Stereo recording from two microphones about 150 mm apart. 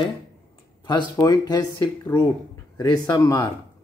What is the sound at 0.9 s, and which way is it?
Speech, 25° left (ahead or behind).